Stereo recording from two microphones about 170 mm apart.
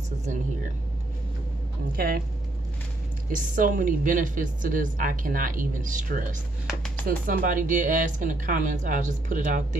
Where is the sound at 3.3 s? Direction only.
50° right (ahead or behind).